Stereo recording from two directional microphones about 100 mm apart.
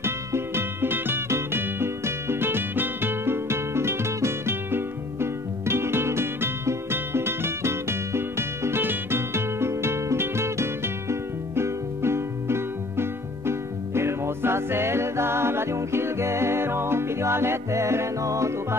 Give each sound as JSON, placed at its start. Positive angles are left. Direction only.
{"t": 0.0, "sound": "music", "side_deg": -25}